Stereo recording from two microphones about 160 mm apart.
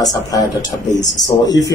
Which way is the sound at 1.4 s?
25° left (ahead or behind).